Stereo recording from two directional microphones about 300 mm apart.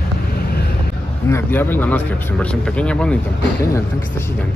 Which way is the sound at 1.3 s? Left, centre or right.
Centre.